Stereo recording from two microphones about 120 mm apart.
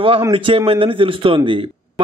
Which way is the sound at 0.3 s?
50° right (ahead or behind).